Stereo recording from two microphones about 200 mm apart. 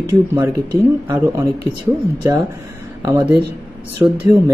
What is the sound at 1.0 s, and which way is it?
Speech, 15° right (ahead or behind).